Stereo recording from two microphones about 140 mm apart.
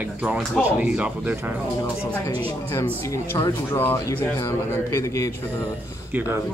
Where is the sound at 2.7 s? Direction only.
20° left (ahead or behind).